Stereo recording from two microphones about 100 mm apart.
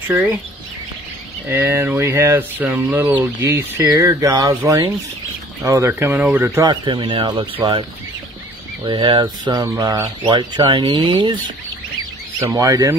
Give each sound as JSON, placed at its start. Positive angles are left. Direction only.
{"t": 0.1, "sound": "speech", "side_deg": -25}
{"t": 1.5, "sound": "speech", "side_deg": -25}
{"t": 4.3, "sound": "speech", "side_deg": -45}
{"t": 5.7, "sound": "speech", "side_deg": -25}
{"t": 6.6, "sound": "speech", "side_deg": -55}
{"t": 8.8, "sound": "speech", "side_deg": -50}
{"t": 10.2, "sound": "speech", "side_deg": -50}
{"t": 12.4, "sound": "speech", "side_deg": -35}